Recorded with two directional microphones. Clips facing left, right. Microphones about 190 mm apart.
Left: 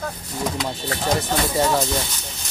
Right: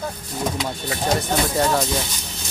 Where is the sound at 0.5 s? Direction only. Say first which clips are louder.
Even; 10° right (ahead or behind).